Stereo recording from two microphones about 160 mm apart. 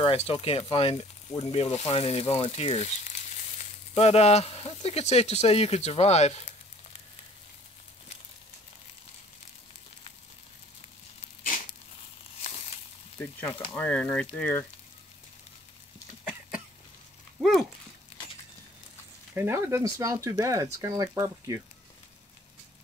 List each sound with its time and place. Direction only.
0.0 s speech: 35° left (ahead or behind)
12.4 s a sound: 40° left (ahead or behind)
13.7 s speech: 10° left (ahead or behind)
16.3 s a sound: 5° right (ahead or behind)
17.4 s speech: centre (ahead or behind)
19.3 s speech: 15° right (ahead or behind)